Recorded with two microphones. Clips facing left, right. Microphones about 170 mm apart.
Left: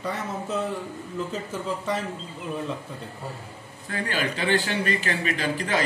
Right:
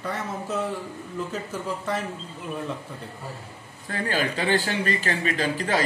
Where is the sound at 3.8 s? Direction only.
40° right (ahead or behind).